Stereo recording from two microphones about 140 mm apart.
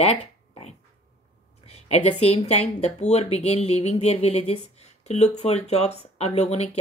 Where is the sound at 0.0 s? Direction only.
45° left (ahead or behind).